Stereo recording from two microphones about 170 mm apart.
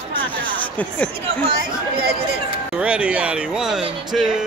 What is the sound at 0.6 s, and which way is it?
Speech, 10° left (ahead or behind).